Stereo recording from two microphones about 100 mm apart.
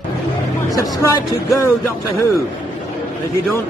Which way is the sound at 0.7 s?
35° left (ahead or behind).